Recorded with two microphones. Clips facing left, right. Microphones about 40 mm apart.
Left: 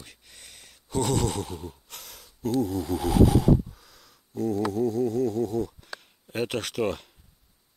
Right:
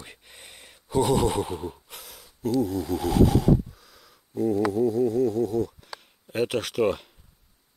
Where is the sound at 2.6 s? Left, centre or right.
Centre.